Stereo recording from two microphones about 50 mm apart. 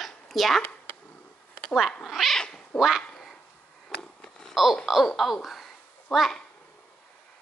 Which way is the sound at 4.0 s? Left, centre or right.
Centre.